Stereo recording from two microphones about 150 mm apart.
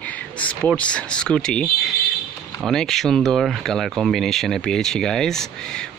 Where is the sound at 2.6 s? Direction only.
5° left (ahead or behind).